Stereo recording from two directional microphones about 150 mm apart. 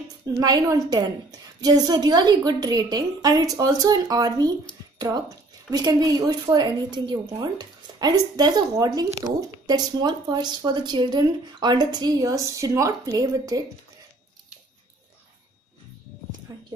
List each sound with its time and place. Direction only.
0.4 s speech: 25° right (ahead or behind)
4.9 s a sound: 25° right (ahead or behind)
5.7 s speech: 30° right (ahead or behind)